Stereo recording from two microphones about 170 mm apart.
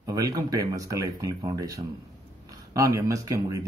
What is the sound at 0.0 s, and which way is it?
Speech, 20° right (ahead or behind).